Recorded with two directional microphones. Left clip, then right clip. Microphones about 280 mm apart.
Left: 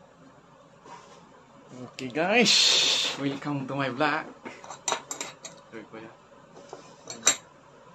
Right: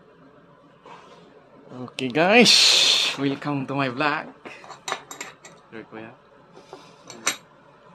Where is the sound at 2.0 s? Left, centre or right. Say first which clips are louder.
Right 7 dB; right.